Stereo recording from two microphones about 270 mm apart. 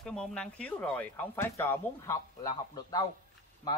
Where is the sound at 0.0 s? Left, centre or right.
Centre.